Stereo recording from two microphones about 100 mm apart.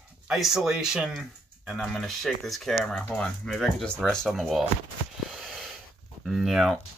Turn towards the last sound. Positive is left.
turn(degrees=0)  # may be behind; listen again after turning